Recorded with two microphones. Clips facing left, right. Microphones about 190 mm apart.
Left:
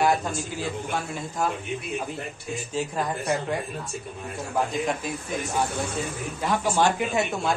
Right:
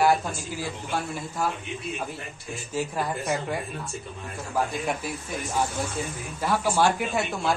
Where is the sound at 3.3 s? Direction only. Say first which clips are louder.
Left 2 dB; centre (ahead or behind).